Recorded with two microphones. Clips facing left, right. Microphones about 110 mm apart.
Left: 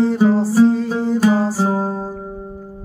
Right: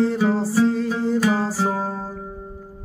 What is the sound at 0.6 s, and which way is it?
Music, centre (ahead or behind).